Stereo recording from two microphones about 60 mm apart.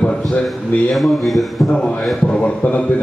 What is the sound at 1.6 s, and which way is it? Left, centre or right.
A man's voice, centre.